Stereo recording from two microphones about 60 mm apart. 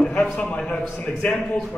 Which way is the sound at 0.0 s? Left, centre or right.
Centre.